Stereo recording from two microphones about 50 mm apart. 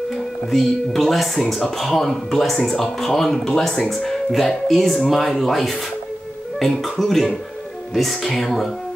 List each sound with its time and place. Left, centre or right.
0.5 s speech: centre